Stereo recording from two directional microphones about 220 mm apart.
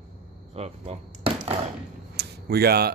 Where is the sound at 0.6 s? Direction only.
30° right (ahead or behind).